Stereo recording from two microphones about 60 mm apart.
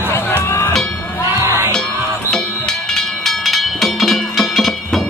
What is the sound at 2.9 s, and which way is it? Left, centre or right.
Music, centre.